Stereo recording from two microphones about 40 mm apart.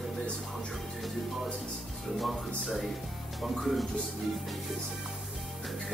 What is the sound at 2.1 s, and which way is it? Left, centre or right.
Speech, centre.